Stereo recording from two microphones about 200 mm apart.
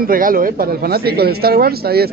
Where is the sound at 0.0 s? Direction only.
45° right (ahead or behind).